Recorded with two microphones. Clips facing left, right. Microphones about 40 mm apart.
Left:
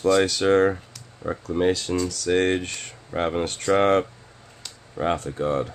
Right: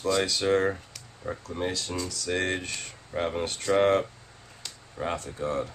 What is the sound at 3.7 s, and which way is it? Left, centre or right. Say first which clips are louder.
Speech: left 3 dB; left.